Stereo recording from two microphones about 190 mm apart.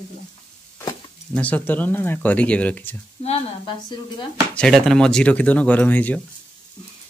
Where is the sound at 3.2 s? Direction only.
30° left (ahead or behind).